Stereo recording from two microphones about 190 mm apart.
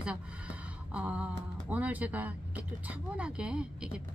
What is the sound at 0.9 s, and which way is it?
Speech, 5° right (ahead or behind).